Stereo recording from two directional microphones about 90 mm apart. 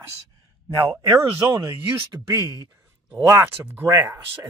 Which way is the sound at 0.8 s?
30° right (ahead or behind).